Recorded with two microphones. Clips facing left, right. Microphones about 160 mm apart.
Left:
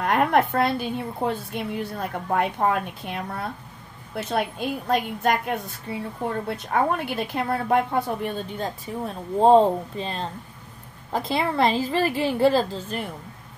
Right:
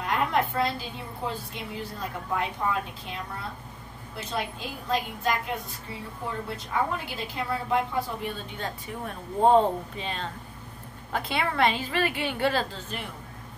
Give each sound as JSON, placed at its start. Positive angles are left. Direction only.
{"t": 0.0, "sound": "a woman's voice", "side_deg": 60}
{"t": 8.5, "sound": "a woman's voice", "side_deg": 30}